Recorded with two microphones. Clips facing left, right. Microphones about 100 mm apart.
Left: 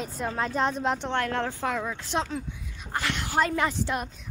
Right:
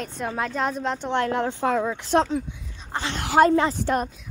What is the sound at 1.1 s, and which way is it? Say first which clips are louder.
Speech: right 4 dB; 15° right (ahead or behind).